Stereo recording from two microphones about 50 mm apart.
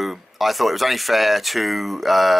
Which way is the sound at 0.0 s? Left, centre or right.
Centre.